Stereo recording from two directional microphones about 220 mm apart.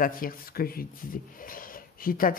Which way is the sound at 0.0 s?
40° left (ahead or behind).